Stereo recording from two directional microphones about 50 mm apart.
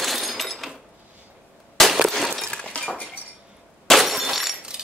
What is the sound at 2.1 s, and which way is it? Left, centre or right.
Breaking, centre.